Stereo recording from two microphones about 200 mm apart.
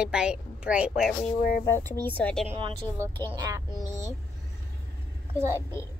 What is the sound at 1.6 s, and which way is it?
Speech, 15° left (ahead or behind).